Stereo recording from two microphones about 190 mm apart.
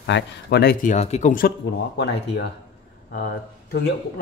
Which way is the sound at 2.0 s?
65° left (ahead or behind).